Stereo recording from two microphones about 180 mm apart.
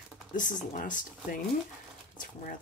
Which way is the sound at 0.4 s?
45° left (ahead or behind).